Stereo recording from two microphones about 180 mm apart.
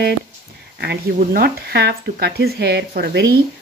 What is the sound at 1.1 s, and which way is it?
Speech, 60° right (ahead or behind).